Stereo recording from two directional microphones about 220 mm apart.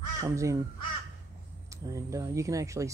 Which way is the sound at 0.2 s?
15° right (ahead or behind).